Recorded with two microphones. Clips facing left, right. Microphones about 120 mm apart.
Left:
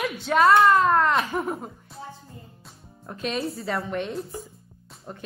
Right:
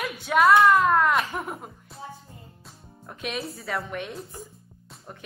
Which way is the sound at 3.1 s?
5° right (ahead or behind).